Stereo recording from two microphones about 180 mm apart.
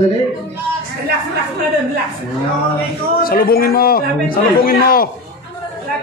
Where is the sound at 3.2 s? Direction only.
55° left (ahead or behind).